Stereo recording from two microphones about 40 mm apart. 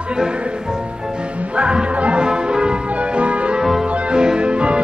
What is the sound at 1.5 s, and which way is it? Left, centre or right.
Music, right.